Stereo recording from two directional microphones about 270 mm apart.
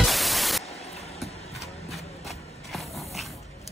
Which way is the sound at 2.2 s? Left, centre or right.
Centre.